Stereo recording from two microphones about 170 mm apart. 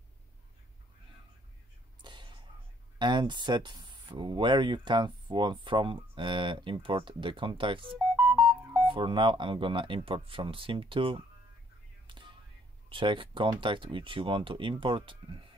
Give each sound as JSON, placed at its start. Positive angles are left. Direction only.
{"t": 2.0, "sound": "whispering", "side_deg": -25}
{"t": 3.0, "sound": "speech", "side_deg": -25}
{"t": 12.9, "sound": "speech", "side_deg": -30}